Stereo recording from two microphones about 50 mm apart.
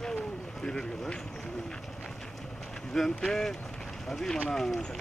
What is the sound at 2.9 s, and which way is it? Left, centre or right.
Speech, centre.